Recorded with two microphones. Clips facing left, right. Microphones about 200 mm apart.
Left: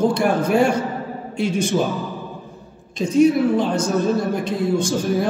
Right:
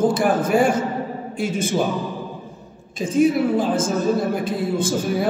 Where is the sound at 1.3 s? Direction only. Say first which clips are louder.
Left 3 dB; 50° right (ahead or behind).